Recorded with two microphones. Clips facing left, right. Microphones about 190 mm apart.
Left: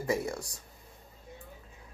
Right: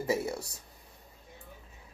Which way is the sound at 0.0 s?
5° right (ahead or behind).